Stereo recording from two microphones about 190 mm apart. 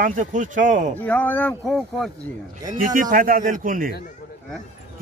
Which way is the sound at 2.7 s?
45° right (ahead or behind).